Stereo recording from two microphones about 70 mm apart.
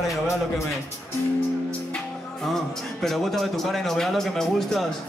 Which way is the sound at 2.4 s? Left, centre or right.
Centre.